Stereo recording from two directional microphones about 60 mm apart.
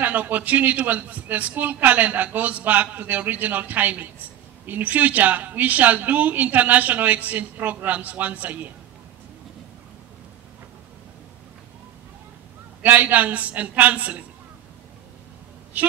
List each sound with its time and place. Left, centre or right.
0.0 s a woman's voice: right
12.8 s a woman's voice: right
15.7 s a woman's voice: right